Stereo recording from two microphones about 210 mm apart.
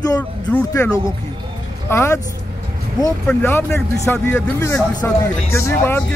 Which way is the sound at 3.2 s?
10° left (ahead or behind).